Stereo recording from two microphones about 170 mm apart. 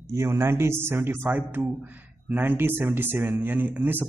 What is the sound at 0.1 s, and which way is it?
Speech, 15° right (ahead or behind).